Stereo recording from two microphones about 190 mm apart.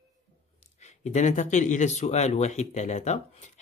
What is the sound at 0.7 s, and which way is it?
Speech, 40° left (ahead or behind).